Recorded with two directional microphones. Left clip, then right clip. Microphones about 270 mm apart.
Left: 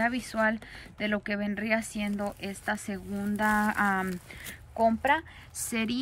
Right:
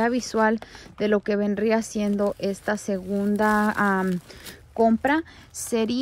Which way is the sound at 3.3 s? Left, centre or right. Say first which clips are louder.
Right 4 dB; left.